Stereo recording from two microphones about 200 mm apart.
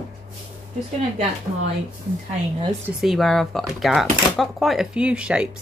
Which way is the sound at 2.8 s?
Centre (ahead or behind).